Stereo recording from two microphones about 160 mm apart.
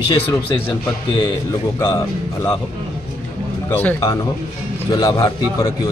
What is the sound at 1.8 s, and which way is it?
Speech, 15° left (ahead or behind).